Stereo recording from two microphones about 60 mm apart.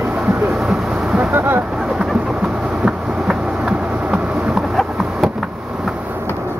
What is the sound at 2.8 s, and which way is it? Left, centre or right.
Vehicle, centre.